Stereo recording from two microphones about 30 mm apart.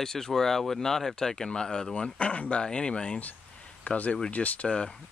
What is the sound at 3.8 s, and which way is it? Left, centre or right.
Speech, left.